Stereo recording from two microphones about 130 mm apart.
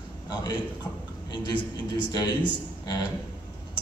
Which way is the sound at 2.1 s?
30° left (ahead or behind).